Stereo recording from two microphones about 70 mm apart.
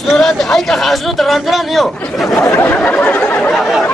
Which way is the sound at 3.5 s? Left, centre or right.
Centre.